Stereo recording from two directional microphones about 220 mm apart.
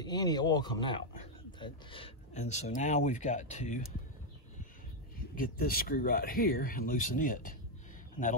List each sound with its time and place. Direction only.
0.0 s a man's voice: 20° left (ahead or behind); by 3.8 s 35° left (ahead or behind)
5.3 s speech: 40° left (ahead or behind)